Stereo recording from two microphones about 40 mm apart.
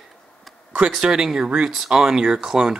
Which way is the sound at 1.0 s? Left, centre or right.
Centre.